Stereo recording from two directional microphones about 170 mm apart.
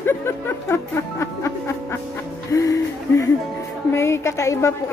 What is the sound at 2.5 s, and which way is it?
A woman's voice, 20° left (ahead or behind).